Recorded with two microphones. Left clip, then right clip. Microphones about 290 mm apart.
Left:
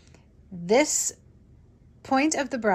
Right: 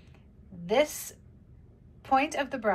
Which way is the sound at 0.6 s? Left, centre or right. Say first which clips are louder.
Left 5 dB; left.